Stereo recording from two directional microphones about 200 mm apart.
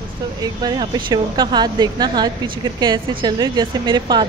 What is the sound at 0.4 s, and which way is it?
Speech, 20° right (ahead or behind).